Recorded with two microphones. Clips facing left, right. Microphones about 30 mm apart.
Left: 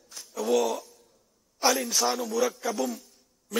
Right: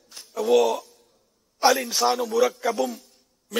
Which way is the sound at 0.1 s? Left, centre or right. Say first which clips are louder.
Right 6 dB; right.